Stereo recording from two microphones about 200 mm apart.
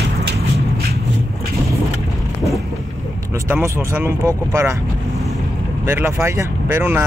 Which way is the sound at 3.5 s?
15° right (ahead or behind).